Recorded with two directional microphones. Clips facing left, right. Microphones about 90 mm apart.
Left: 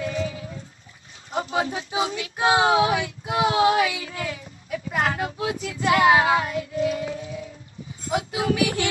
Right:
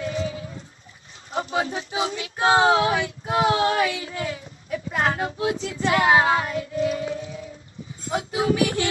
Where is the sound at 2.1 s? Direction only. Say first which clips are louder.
Right 2 dB; 30° right (ahead or behind).